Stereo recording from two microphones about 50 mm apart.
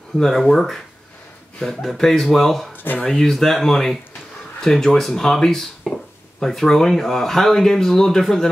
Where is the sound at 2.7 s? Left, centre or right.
Left.